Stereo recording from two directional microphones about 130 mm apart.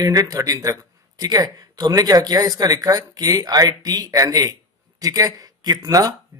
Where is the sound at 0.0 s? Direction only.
25° right (ahead or behind).